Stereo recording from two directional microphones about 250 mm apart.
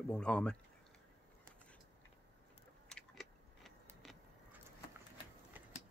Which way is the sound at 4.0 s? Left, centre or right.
Centre.